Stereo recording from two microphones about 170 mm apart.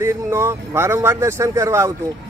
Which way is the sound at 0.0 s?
15° right (ahead or behind).